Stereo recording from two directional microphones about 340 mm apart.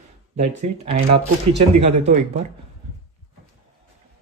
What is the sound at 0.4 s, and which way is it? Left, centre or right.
A man's voice, centre.